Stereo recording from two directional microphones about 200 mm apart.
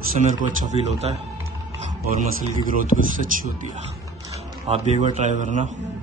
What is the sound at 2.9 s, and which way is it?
Speech, 30° left (ahead or behind).